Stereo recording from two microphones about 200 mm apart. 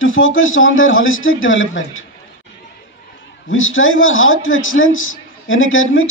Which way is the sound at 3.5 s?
80° left.